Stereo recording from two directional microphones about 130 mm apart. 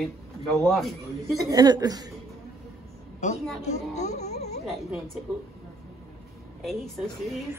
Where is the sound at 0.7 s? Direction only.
Centre (ahead or behind).